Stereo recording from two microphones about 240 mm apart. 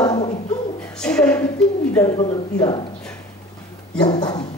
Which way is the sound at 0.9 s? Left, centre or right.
Centre.